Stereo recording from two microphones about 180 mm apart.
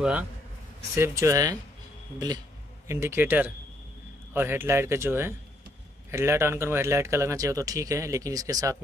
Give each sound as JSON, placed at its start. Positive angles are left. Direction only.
{"t": 0.0, "sound": "speech", "side_deg": -10}